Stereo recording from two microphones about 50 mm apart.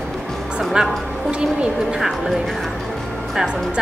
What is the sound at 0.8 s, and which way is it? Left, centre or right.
Speech, centre.